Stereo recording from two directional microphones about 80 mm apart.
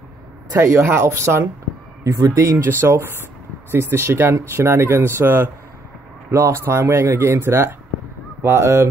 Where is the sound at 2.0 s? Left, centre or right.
Right.